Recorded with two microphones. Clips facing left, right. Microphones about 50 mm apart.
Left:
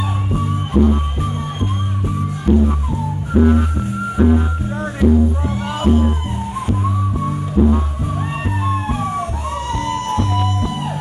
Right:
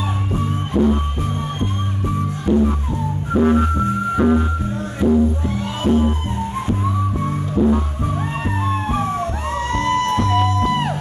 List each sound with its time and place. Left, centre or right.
8.9 s music: right